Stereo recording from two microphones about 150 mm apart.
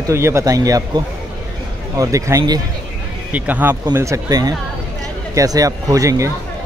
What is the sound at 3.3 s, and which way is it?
Speech, 10° right (ahead or behind).